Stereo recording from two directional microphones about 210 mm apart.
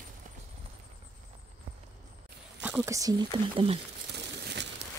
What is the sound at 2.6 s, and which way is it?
Speech, 5° right (ahead or behind).